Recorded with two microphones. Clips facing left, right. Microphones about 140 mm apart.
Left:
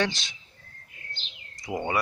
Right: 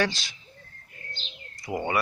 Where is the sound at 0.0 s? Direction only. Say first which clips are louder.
Right 1 dB; 20° left (ahead or behind).